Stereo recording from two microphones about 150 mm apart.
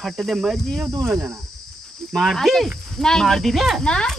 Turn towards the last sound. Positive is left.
turn(degrees=5)  # may be behind; listen again after turning